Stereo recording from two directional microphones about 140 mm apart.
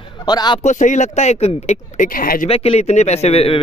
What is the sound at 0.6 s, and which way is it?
Speech, 60° left (ahead or behind).